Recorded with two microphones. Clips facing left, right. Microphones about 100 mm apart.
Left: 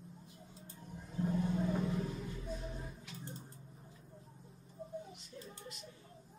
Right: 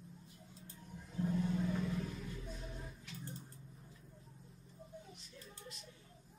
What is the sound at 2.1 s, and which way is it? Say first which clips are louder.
Music: left 4 dB; 25° left (ahead or behind).